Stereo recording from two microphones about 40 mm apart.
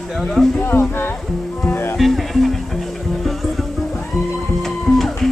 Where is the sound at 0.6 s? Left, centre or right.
Left.